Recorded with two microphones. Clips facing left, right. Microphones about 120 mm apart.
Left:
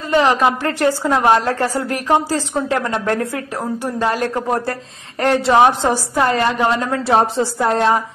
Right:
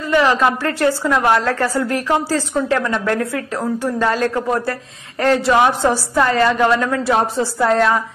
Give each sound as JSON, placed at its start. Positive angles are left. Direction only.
{"t": 0.1, "sound": "a woman's voice", "side_deg": 20}
{"t": 3.8, "sound": "a woman's voice", "side_deg": 15}
{"t": 5.2, "sound": "a woman's voice", "side_deg": 30}
{"t": 7.5, "sound": "a woman's voice", "side_deg": 15}